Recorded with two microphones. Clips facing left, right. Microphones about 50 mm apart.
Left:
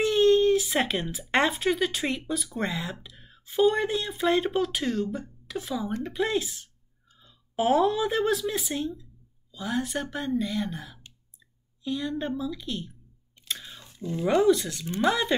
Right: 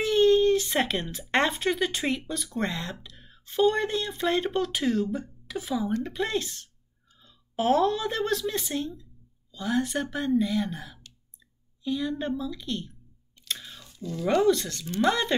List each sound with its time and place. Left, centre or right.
0.0 s a woman's voice: centre
13.5 s chewing: centre
13.7 s a sound: left
14.4 s a woman's voice: centre